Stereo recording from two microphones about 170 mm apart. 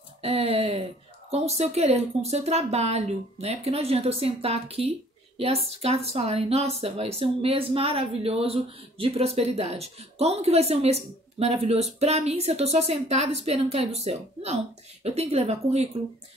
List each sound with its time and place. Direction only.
0.2 s speech: 35° right (ahead or behind)